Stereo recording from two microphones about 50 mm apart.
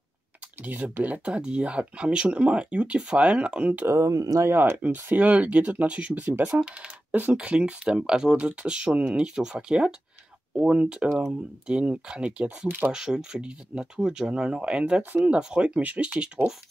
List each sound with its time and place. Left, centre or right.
0.7 s speech: right
1.2 s speech: centre
3.8 s speech: right
4.5 s speech: right
4.8 s speech: right
6.5 s a sound: centre
7.4 s speech: right
12.6 s speech: right
12.9 s speech: centre